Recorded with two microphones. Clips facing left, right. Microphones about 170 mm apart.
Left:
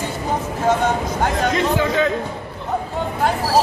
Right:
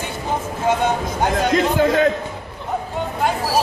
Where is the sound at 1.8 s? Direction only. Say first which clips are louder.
Right 3 dB; 55° right (ahead or behind).